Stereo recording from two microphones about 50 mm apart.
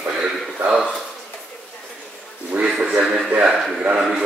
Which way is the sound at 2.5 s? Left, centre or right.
Right.